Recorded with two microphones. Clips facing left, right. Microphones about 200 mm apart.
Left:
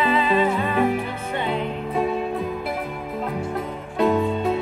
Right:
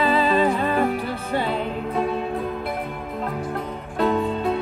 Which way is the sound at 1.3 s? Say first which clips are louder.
Right 1 dB; 35° right (ahead or behind).